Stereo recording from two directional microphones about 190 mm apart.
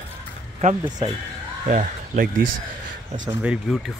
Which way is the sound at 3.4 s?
5° right (ahead or behind).